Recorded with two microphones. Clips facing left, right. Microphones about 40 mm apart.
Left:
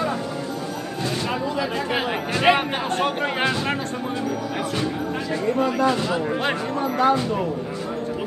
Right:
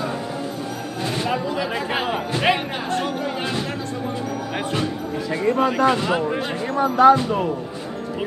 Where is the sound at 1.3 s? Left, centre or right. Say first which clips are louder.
Right 1 dB; centre.